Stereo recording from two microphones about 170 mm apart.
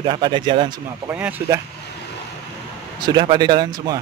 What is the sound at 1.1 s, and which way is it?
Speech, 10° right (ahead or behind).